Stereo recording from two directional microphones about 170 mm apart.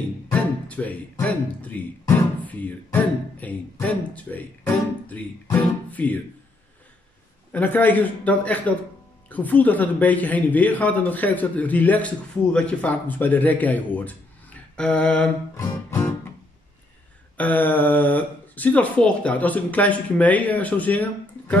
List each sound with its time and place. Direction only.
0.3 s speech: 10° left (ahead or behind)
7.5 s speech: 10° left (ahead or behind)
15.5 s music: 20° left (ahead or behind)
17.4 s speech: 10° left (ahead or behind)